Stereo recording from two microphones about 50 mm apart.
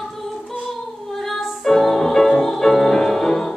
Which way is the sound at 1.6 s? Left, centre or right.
Centre.